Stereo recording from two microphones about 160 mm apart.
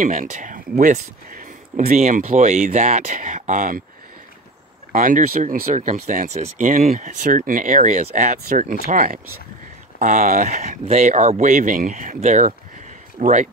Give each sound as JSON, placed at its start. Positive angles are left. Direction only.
{"t": 0.0, "sound": "speech", "side_deg": -55}
{"t": 4.9, "sound": "speech", "side_deg": -60}